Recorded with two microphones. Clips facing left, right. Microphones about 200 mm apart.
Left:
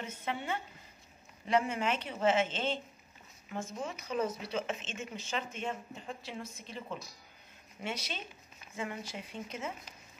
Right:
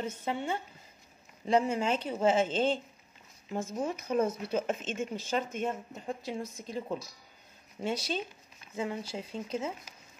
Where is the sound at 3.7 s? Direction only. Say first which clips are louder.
Right 6 dB; 45° right (ahead or behind).